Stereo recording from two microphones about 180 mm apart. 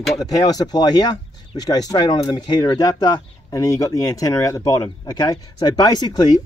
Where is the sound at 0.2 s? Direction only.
20° left (ahead or behind).